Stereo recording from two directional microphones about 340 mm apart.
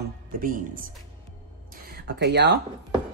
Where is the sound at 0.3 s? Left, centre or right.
Right.